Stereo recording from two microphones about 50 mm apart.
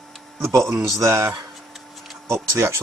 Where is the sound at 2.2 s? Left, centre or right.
Right.